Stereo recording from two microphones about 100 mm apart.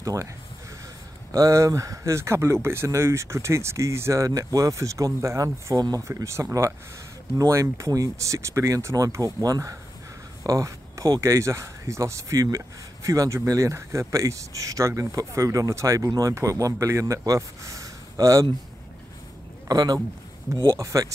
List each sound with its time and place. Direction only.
0.0 s speech: 35° right (ahead or behind)
1.3 s speech: 30° right (ahead or behind)
19.7 s speech: 40° right (ahead or behind)